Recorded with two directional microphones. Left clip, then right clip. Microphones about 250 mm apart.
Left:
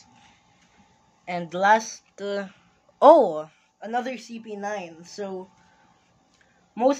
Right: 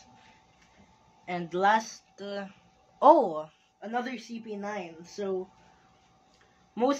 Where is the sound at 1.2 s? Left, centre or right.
Left.